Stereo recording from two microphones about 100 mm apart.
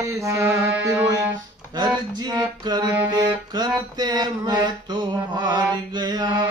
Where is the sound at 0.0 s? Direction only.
30° right (ahead or behind).